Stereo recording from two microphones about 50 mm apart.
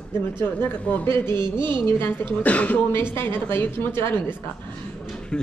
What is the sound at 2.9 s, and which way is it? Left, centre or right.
A woman's voice, left.